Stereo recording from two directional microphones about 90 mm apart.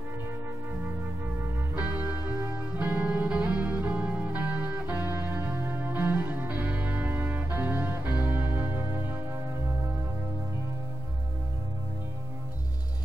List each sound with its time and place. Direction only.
1.8 s music: 15° right (ahead or behind)